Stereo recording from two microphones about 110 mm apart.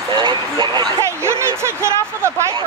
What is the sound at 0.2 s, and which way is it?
Vehicle, 40° right (ahead or behind).